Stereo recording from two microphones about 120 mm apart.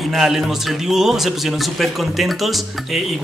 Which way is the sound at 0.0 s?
Centre (ahead or behind).